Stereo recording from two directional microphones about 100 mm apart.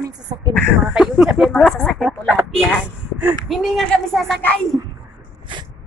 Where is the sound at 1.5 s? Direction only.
5° left (ahead or behind).